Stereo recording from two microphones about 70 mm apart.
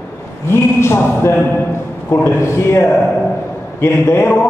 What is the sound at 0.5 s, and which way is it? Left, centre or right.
A man's voice, left.